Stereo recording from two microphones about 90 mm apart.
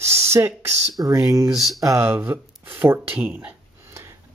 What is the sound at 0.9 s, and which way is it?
Speech, 40° right (ahead or behind).